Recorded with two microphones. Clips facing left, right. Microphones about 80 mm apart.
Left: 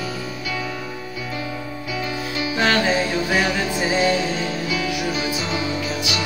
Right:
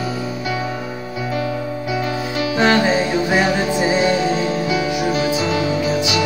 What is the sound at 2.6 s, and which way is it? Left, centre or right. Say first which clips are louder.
Music: right 4 dB; centre.